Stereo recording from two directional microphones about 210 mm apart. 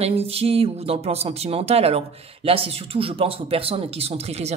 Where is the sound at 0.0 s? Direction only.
30° right (ahead or behind).